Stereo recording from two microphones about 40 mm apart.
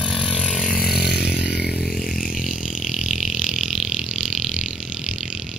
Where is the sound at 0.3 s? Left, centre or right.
Left.